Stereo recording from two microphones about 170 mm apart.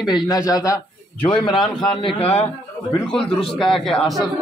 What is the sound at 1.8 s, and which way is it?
Speech, 35° left (ahead or behind).